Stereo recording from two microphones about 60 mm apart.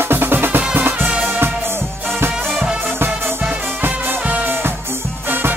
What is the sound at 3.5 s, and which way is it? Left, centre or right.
Music, right.